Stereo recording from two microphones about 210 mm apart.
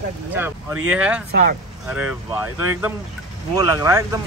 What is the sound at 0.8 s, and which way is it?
Speech, 5° right (ahead or behind).